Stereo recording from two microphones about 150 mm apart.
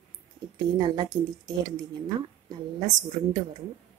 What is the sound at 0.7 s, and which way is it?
Speech, 30° right (ahead or behind).